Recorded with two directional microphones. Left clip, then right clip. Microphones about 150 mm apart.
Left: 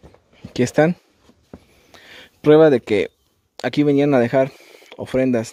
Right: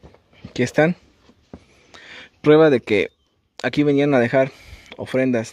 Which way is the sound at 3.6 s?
20° left (ahead or behind).